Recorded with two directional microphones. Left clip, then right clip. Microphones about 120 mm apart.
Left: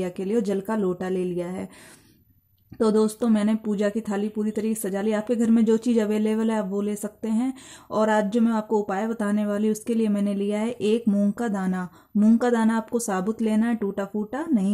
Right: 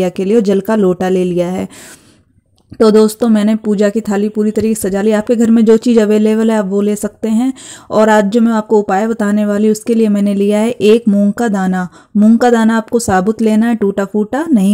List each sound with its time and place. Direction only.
0.0 s speech: 45° right (ahead or behind)
2.8 s speech: 35° right (ahead or behind)
11.1 s speech: 20° right (ahead or behind)
11.3 s speech: 40° right (ahead or behind)